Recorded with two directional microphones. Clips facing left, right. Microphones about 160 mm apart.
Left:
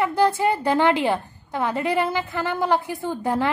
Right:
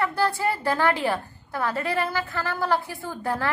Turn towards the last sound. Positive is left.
turn(degrees=20)  # may be behind; listen again after turning